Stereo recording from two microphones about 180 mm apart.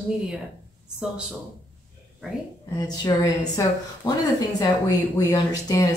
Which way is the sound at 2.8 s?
20° left (ahead or behind).